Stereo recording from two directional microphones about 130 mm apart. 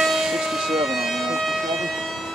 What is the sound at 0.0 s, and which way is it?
Siren, centre (ahead or behind).